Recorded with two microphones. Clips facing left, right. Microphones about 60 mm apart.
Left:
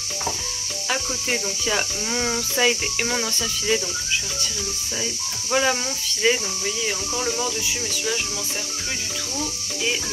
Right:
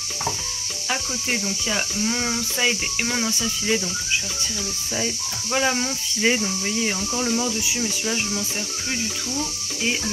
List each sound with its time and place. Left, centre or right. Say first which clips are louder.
0.8 s speech: left 1 dB; centre
5.5 s speech: left 1 dB; centre
6.2 s speech: left 1 dB; right
7.2 s speech: right 2 dB; centre
7.6 s speech: right 1 dB; centre